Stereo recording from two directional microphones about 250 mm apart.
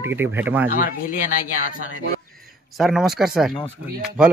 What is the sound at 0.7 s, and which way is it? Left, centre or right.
Speech, left.